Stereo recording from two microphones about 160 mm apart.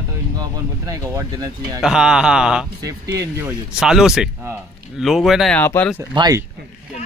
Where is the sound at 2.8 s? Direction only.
20° right (ahead or behind).